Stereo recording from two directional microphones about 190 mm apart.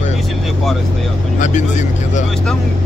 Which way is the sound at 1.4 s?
40° left (ahead or behind).